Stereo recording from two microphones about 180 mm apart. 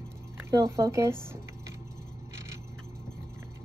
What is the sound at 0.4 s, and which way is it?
Speech, 15° right (ahead or behind).